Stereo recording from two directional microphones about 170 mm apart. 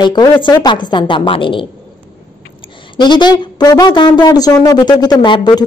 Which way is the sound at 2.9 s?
25° left (ahead or behind).